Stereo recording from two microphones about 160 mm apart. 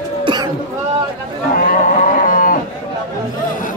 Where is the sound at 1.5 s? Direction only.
55° left (ahead or behind).